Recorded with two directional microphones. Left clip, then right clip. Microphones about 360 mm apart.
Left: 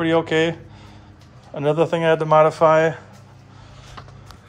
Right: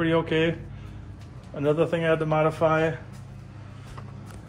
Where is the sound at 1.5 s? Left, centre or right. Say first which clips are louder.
Left 5 dB; centre.